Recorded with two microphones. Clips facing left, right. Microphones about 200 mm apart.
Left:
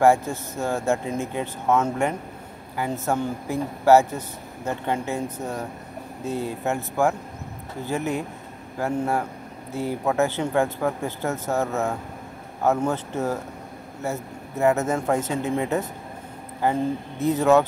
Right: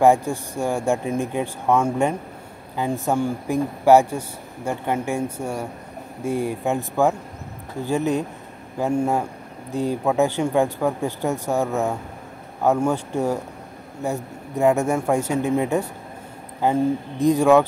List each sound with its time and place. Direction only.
0.0 s speech: 15° right (ahead or behind)